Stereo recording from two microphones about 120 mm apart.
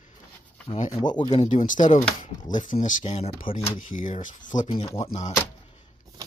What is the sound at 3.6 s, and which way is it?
Speech, 90° left.